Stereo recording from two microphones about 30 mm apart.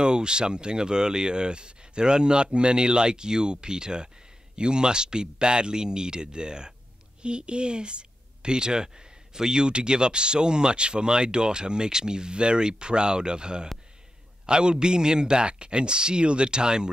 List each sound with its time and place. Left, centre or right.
0.0 s a man's voice: right